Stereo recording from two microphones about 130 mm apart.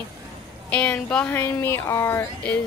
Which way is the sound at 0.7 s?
10° left (ahead or behind).